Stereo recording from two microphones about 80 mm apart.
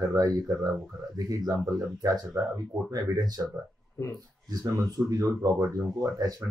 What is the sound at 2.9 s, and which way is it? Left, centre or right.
Speech, right.